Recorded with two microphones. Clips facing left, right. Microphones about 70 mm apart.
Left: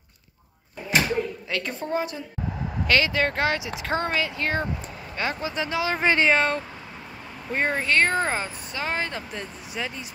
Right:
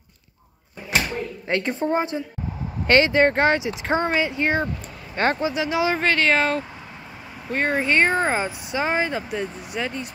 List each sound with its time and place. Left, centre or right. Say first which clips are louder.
1.5 s speech: right 9 dB; right
5.1 s speech: right 7 dB; right
5.4 s speech: right 5 dB; centre
6.0 s speech: left 3 dB; centre
6.3 s speech: right 2 dB; centre
7.8 s speech: right 3 dB; centre